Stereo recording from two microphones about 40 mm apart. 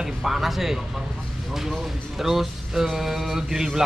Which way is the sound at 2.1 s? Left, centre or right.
Centre.